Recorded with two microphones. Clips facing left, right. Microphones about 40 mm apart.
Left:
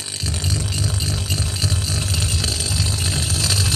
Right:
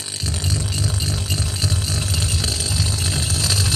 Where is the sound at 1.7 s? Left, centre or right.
Left.